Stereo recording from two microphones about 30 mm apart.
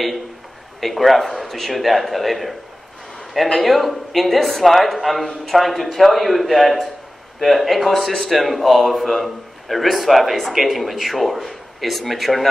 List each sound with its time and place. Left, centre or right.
0.7 s a man's voice: centre
3.5 s a man's voice: centre